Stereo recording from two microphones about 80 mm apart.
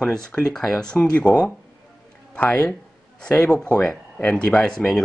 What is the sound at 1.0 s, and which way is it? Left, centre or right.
Speech, centre.